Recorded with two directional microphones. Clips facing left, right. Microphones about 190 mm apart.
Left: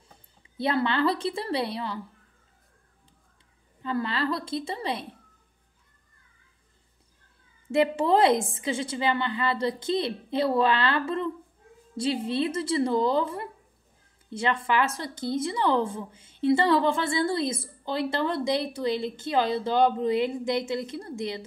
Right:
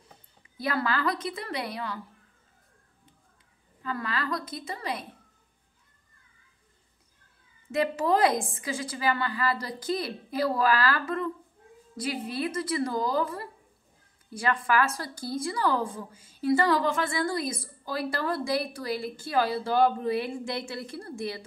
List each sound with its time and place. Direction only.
0.6 s a woman's voice: 25° left (ahead or behind)
3.8 s a woman's voice: 30° left (ahead or behind)
7.7 s a woman's voice: 25° left (ahead or behind)